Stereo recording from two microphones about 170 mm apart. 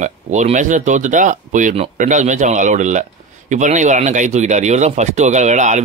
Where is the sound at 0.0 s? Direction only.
45° right (ahead or behind).